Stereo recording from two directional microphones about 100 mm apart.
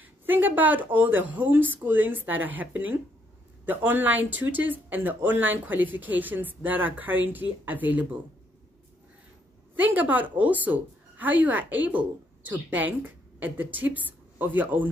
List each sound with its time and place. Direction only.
0.3 s a woman's voice: 20° right (ahead or behind)
9.8 s a woman's voice: 15° right (ahead or behind)